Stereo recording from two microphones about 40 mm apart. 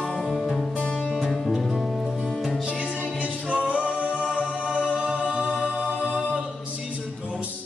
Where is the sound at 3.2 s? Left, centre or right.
Right.